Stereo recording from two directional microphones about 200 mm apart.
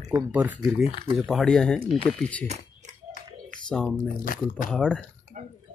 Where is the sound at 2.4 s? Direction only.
35° right (ahead or behind).